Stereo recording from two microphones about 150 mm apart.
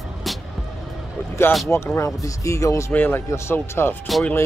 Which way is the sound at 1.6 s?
20° left (ahead or behind).